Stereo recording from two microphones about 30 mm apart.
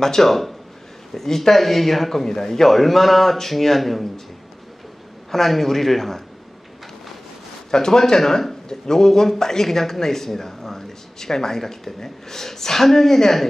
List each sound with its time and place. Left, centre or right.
0.0 s speech: centre
5.3 s speech: centre
7.7 s speech: centre